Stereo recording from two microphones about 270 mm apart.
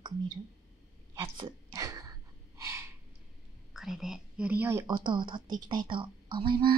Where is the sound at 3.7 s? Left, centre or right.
Centre.